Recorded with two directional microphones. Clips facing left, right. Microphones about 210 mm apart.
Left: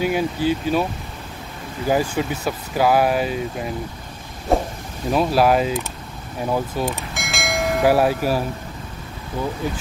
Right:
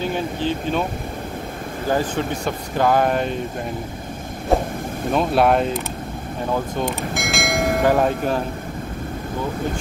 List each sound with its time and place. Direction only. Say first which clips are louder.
0.0 s speech: left 3 dB; 10° left (ahead or behind)
1.9 s speech: left 1 dB; 10° left (ahead or behind)
4.5 s vehicle: even; centre (ahead or behind)
5.1 s speech: even; 5° left (ahead or behind)
6.5 s church bell: even; 5° left (ahead or behind)